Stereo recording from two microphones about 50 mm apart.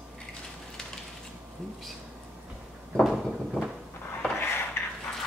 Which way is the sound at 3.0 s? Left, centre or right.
Centre.